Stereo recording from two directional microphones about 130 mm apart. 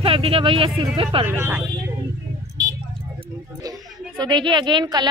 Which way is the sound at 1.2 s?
15° right (ahead or behind).